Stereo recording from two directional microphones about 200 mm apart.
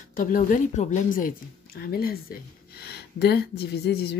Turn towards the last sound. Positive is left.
turn(degrees=55)  # may be behind; listen again after turning